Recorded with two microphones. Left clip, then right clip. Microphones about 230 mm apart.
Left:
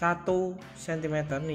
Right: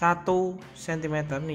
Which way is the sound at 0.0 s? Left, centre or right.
Centre.